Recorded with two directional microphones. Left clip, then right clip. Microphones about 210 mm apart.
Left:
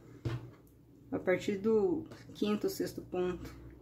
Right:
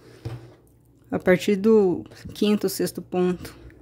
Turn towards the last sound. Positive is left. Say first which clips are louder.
# right 11 dB
turn(degrees=-40)  # may be behind; listen again after turning